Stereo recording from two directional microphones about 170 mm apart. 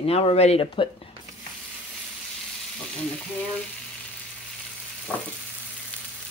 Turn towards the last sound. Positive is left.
turn(degrees=10)  # may be behind; listen again after turning